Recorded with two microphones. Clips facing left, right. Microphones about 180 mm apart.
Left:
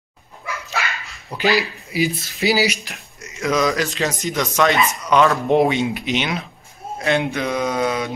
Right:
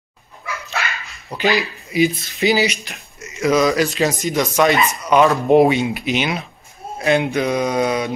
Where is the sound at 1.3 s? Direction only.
Centre (ahead or behind).